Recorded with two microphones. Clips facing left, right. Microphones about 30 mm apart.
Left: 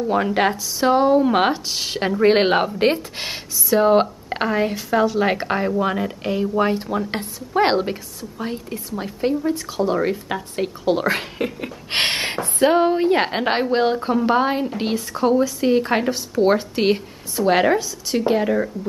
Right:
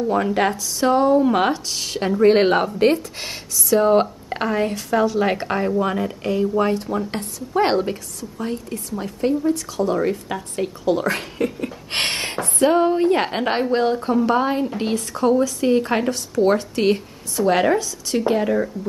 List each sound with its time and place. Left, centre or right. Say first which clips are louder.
0.1 s a woman's voice: left 2 dB; centre
3.7 s a woman's voice: even; centre